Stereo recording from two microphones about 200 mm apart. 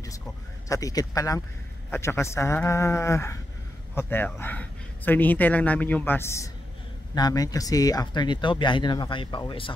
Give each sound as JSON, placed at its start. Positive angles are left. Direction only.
{"t": 0.7, "sound": "a woman's voice", "side_deg": 15}